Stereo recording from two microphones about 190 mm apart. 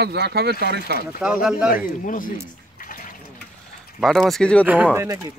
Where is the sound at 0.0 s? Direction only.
60° right (ahead or behind).